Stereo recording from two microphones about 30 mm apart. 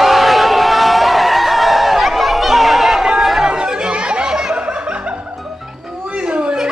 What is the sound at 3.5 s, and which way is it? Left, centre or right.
Chatter, right.